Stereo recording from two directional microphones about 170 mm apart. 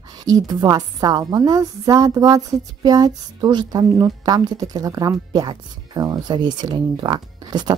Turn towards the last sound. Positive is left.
turn(degrees=-25)  # may be behind; listen again after turning